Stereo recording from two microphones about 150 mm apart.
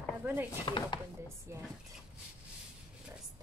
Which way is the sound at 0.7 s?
30° left (ahead or behind).